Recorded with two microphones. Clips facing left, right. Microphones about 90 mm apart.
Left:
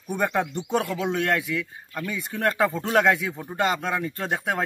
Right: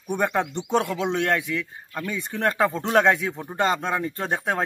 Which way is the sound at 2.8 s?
25° right (ahead or behind).